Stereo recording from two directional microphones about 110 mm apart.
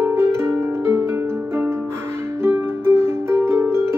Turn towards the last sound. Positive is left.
turn(degrees=-25)  # may be behind; listen again after turning